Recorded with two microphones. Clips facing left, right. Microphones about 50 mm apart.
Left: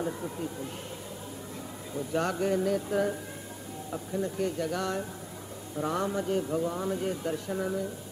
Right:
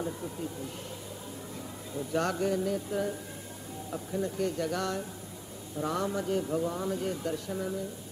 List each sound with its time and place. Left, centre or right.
2.0 s speech: centre
2.6 s music: left
3.9 s speech: centre
7.4 s speech: left